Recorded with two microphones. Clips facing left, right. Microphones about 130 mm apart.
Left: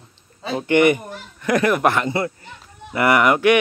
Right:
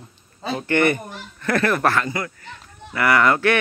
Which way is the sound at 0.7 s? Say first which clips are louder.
Left 4 dB; 15° left (ahead or behind).